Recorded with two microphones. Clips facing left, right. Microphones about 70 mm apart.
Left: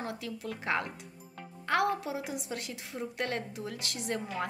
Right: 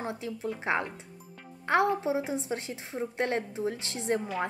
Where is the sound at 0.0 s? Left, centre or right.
Right.